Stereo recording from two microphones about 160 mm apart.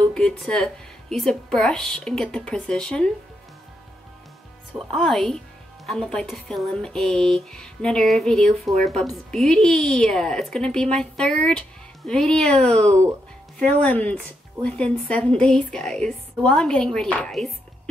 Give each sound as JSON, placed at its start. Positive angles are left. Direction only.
{"t": 0.1, "sound": "speech", "side_deg": 5}
{"t": 4.7, "sound": "a woman's voice", "side_deg": 0}